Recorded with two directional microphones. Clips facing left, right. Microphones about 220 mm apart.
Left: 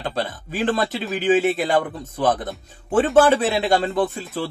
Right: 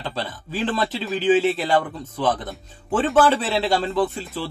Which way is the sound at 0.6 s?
45° left (ahead or behind).